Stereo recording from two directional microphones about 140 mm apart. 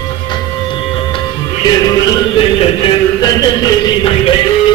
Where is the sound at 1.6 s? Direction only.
30° left (ahead or behind).